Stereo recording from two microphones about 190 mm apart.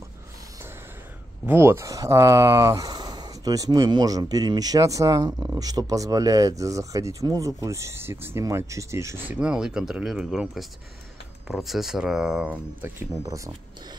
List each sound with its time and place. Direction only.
1.4 s speech: 10° right (ahead or behind)